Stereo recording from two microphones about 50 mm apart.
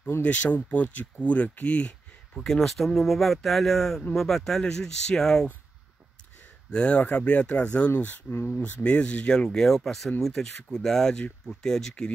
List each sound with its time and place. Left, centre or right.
0.2 s speech: left
2.3 s speech: centre
6.7 s speech: left
8.3 s speech: left
8.5 s speech: left
9.3 s speech: centre